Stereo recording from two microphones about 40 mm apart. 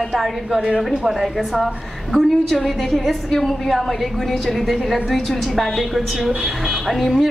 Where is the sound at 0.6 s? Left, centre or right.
Centre.